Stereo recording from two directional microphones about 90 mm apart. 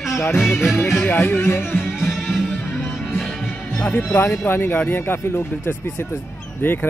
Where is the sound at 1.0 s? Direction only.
20° left (ahead or behind).